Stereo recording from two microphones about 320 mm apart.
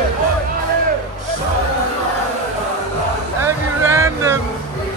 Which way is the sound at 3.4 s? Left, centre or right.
Centre.